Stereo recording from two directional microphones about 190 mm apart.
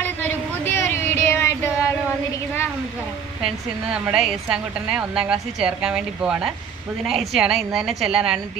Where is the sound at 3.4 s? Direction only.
5° right (ahead or behind).